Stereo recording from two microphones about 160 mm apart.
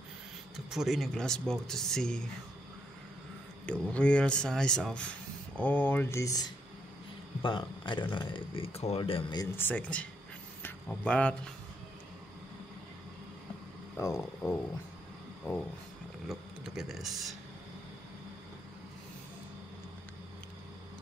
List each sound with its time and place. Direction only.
0.7 s speech: centre (ahead or behind)
3.6 s speech: 5° left (ahead or behind); by 9.5 s 30° left (ahead or behind)
9.6 s speech: 10° left (ahead or behind)
13.9 s speech: 15° left (ahead or behind)
16.3 s speech: centre (ahead or behind)